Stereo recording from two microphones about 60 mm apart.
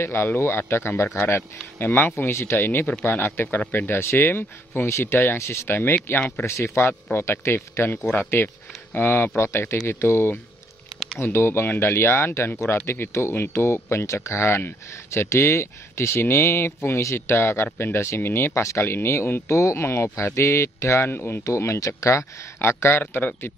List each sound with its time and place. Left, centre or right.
0.0 s speech: left
2.1 s speech: left
5.4 s speech: left
5.7 s speech: left
6.4 s speech: left
19.5 s speech: left
21.7 s speech: left
22.6 s speech: left